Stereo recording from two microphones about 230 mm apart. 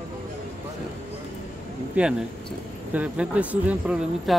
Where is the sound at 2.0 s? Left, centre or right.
Centre.